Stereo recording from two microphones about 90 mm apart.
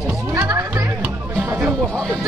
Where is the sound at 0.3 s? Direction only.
30° right (ahead or behind).